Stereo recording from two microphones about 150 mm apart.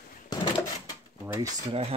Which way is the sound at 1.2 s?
20° right (ahead or behind).